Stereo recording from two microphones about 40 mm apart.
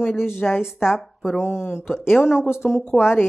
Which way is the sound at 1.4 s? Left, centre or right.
Left.